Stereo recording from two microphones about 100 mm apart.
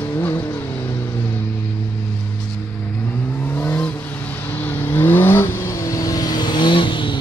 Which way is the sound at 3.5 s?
20° left (ahead or behind).